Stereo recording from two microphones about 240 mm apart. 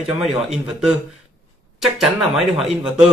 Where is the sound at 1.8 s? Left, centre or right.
Centre.